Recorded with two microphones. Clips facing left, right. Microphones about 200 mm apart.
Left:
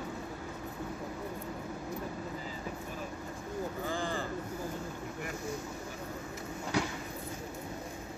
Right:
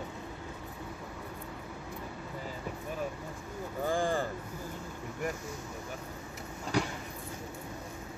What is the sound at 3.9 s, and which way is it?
Vehicle, 45° right (ahead or behind).